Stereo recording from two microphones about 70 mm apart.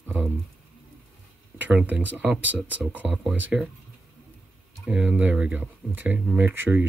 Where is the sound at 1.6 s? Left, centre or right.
Centre.